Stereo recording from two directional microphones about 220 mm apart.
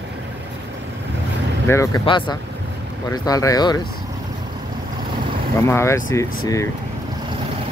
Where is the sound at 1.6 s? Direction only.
15° left (ahead or behind).